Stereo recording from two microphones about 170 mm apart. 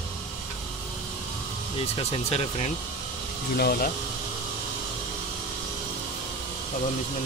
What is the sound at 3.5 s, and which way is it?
Speech, 70° left (ahead or behind).